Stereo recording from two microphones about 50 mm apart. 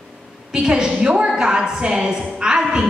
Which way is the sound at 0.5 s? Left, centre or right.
Centre.